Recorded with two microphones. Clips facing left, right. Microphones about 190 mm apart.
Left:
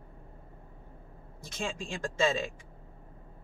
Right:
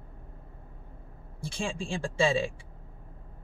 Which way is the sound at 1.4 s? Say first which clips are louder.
Right 3 dB; 30° right (ahead or behind).